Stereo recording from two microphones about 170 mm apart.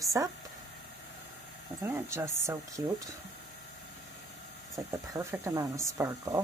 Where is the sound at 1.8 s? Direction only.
15° right (ahead or behind).